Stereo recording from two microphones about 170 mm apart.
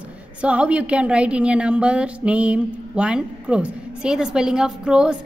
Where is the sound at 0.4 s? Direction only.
5° right (ahead or behind).